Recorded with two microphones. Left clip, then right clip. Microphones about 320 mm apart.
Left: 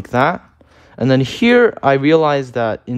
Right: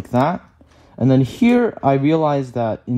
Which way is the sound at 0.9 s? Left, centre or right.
Right.